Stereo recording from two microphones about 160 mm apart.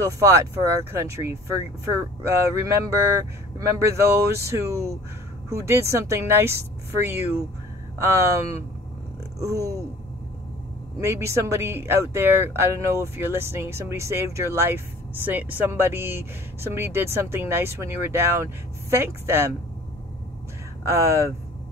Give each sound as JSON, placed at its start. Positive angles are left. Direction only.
{"t": 0.0, "sound": "speech", "side_deg": -20}
{"t": 11.0, "sound": "speech", "side_deg": -15}
{"t": 20.9, "sound": "speech", "side_deg": -20}